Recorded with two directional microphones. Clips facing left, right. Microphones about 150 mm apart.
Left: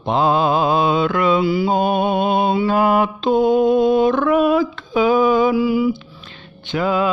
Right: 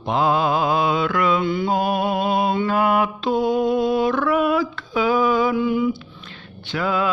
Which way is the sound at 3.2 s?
25° left (ahead or behind).